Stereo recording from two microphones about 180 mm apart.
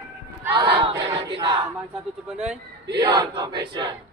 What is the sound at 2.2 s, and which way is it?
Speech, 5° right (ahead or behind).